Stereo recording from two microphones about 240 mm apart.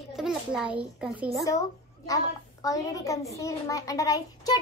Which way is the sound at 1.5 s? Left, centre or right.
Centre.